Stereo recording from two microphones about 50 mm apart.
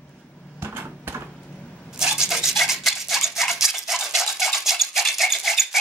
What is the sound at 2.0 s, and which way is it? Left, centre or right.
Rub, centre.